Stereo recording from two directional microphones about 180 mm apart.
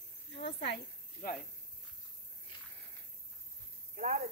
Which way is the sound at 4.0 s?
45° right (ahead or behind).